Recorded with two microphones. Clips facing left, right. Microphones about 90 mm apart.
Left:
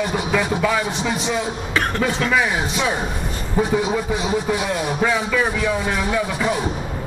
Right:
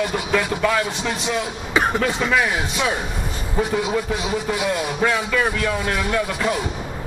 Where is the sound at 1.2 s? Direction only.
10° right (ahead or behind); by 3.7 s 10° left (ahead or behind).